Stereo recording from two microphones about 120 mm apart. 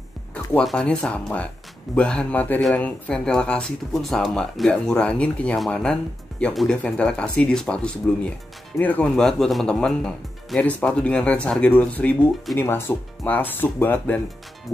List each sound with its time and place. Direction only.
0.3 s music: 10° left (ahead or behind)
0.7 s speech: 10° left (ahead or behind)